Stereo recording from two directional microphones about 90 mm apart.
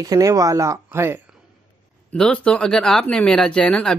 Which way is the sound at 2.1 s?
10° left (ahead or behind).